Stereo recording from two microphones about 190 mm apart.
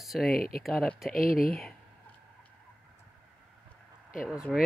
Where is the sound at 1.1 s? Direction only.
45° left (ahead or behind).